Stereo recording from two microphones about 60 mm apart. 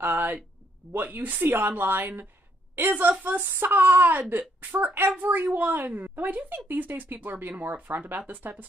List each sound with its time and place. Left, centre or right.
0.0 s a woman's voice: right